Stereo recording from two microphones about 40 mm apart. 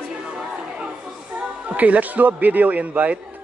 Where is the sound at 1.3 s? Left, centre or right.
Right.